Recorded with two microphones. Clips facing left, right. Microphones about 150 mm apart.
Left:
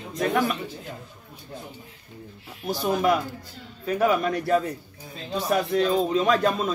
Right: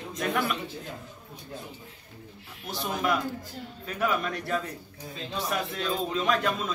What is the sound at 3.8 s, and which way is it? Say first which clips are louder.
Speech: left 7 dB; 40° left (ahead or behind).